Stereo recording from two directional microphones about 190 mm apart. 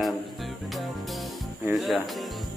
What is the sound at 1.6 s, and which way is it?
Speech, centre (ahead or behind).